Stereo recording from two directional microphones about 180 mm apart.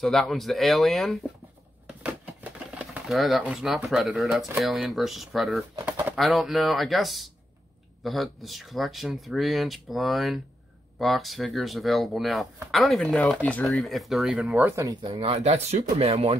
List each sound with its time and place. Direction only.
0.0 s speech: centre (ahead or behind)
1.9 s a sound: 5° right (ahead or behind)
4.5 s speech: centre (ahead or behind)
14.6 s speech: 15° right (ahead or behind)
15.0 s speech: 35° right (ahead or behind)